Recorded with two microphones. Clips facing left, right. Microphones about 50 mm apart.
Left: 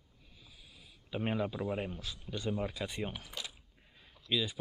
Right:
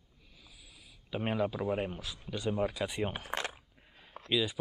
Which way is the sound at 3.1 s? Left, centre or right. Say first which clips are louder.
Right 8 dB; right.